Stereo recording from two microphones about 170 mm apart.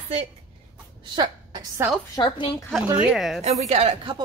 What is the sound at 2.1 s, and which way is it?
Speech, 30° left (ahead or behind).